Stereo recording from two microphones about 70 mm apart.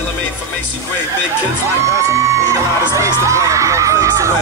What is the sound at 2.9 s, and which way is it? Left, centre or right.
Crowd, right.